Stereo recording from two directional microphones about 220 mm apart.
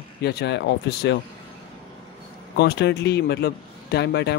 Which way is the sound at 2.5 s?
50° left (ahead or behind).